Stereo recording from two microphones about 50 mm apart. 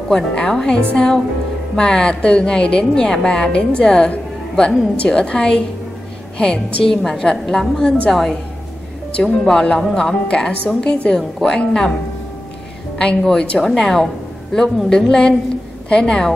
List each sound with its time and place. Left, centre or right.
0.1 s a woman's voice: centre
12.9 s a woman's voice: centre